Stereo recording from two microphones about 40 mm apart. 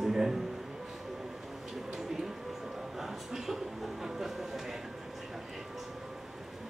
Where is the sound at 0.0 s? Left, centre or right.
Centre.